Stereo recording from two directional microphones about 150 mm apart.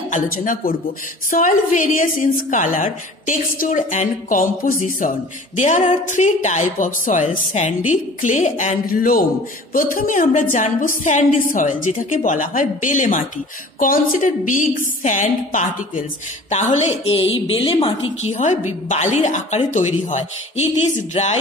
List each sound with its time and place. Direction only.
0.1 s a woman's voice: 65° left (ahead or behind); by 17.9 s 35° left (ahead or behind)
18.3 s speech: 50° left (ahead or behind)